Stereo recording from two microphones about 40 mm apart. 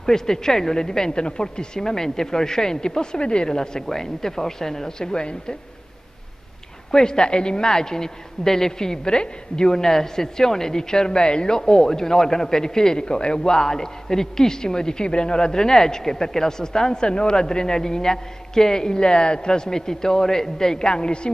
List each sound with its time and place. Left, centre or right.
0.0 s a woman's voice: centre
6.9 s a woman's voice: centre